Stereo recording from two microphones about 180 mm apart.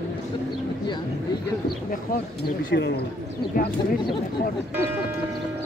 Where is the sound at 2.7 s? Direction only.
70° left (ahead or behind).